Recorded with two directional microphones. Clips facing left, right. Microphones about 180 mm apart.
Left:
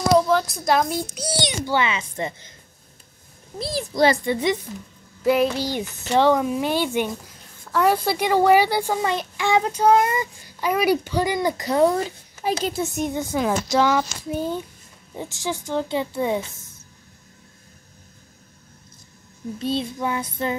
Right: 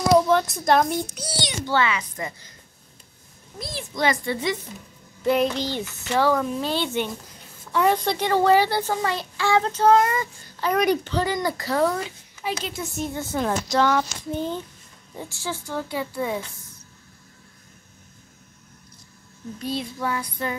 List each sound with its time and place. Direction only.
0.3 s speech: centre (ahead or behind)
1.4 s a woman's voice: 15° left (ahead or behind)
3.5 s a child's voice: 35° left (ahead or behind)
4.2 s a woman's voice: 20° left (ahead or behind)
5.2 s a child's voice: 5° left (ahead or behind)
6.0 s a woman's voice: 20° left (ahead or behind)
6.4 s a child's voice: 10° left (ahead or behind)
12.0 s a child's voice: 40° left (ahead or behind)
12.9 s a child's voice: 15° left (ahead or behind)
13.4 s a child's voice: 5° left (ahead or behind); by 16.4 s 25° left (ahead or behind)
19.6 s a woman's voice: 25° left (ahead or behind)